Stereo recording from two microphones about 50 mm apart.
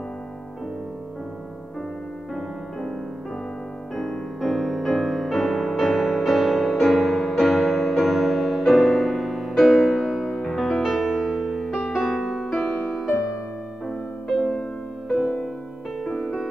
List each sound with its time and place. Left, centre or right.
3.9 s music: centre
12.4 s music: centre